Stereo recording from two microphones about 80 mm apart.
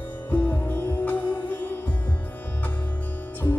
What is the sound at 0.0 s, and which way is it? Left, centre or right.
Music, left.